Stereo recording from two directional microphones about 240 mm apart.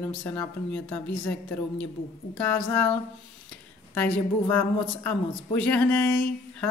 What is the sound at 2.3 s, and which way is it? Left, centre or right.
Speech, centre.